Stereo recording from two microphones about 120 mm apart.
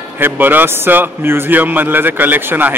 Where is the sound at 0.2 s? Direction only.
15° right (ahead or behind).